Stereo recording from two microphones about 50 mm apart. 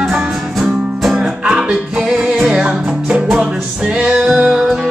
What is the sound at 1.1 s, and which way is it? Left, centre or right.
Music, centre.